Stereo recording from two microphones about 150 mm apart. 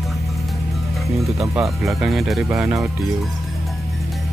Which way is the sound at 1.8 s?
Centre (ahead or behind).